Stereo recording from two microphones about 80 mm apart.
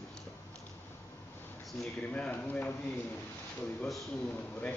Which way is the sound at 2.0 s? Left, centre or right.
Centre.